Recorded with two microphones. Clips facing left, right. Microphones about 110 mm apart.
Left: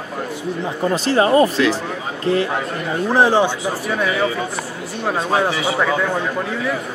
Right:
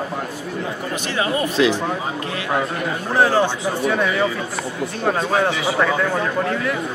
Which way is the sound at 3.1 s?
30° left (ahead or behind).